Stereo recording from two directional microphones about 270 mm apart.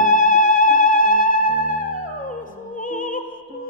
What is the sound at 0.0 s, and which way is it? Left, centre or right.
Music, left.